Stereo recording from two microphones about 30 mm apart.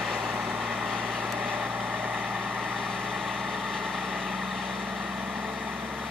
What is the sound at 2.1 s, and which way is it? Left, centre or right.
Vehicle, right.